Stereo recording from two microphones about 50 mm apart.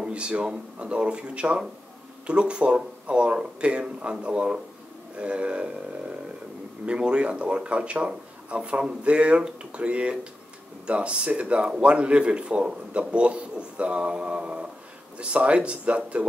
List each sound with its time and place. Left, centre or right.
0.0 s speech: right
6.9 s speech: right